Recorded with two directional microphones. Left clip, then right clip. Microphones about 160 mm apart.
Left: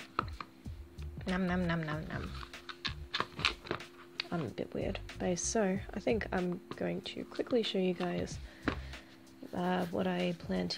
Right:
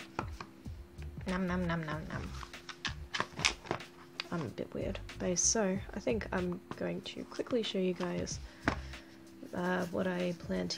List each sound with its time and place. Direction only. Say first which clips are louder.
1.2 s speech: left 1 dB; 20° left (ahead or behind)
2.2 s music: left 1 dB; centre (ahead or behind)
4.2 s a sound: left 1 dB; 15° left (ahead or behind)
4.6 s a woman's voice: left 1 dB; 20° left (ahead or behind)
9.5 s speech: even; 20° left (ahead or behind)